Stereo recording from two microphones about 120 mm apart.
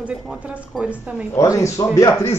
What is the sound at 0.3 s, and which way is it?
Speech, 5° right (ahead or behind).